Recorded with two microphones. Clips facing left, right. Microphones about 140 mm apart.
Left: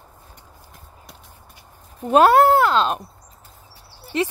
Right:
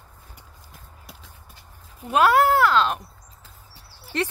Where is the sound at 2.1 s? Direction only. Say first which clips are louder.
Left 5 dB; 30° left (ahead or behind).